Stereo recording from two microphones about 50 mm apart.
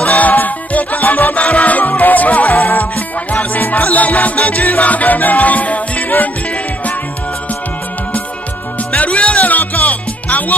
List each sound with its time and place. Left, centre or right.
0.0 s music: left
8.9 s music: left